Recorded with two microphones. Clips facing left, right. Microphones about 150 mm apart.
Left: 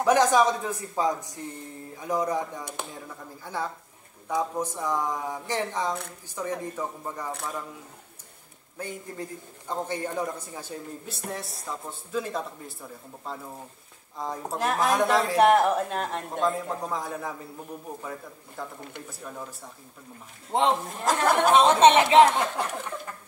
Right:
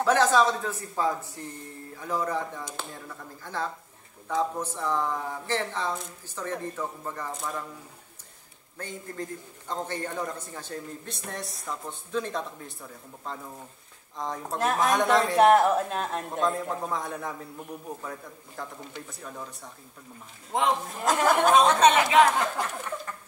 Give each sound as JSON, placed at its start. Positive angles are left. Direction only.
{"t": 0.0, "sound": "a man's voice", "side_deg": 15}
{"t": 8.7, "sound": "a man's voice", "side_deg": 10}
{"t": 18.6, "sound": "speech", "side_deg": 5}
{"t": 20.5, "sound": "speech", "side_deg": 30}
{"t": 21.0, "sound": "speech", "side_deg": -5}
{"t": 21.5, "sound": "speech", "side_deg": 30}